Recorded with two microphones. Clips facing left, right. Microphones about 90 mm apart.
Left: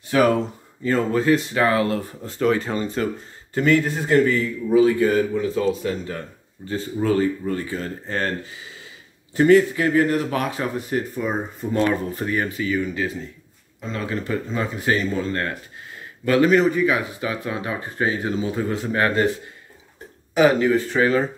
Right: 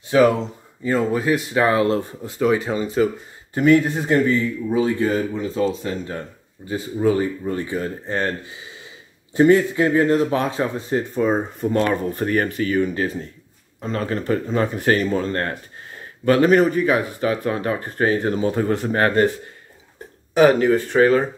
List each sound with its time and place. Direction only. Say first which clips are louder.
0.8 s speech: left 1 dB; 10° right (ahead or behind)
1.6 s speech: right 2 dB; 25° right (ahead or behind)
2.2 s speech: right 1 dB; 10° right (ahead or behind)
3.5 s speech: right 3 dB; 20° right (ahead or behind)
11.7 s speech: even; 40° right (ahead or behind)
12.1 s speech: right 3 dB; 50° right (ahead or behind)
20.3 s speech: right 2 dB; 40° right (ahead or behind)